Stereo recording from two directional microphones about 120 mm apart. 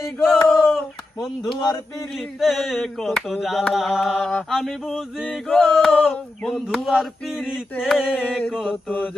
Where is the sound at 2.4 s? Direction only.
Centre (ahead or behind).